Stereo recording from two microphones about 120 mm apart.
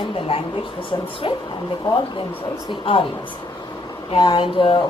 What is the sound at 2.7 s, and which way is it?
Speech, 45° left (ahead or behind).